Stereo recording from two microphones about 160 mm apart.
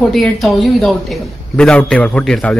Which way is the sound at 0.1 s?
Centre (ahead or behind).